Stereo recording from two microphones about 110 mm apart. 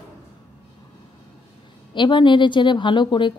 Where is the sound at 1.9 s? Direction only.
45° left (ahead or behind).